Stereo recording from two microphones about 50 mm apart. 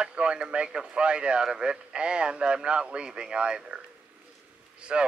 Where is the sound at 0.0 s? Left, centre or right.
Right.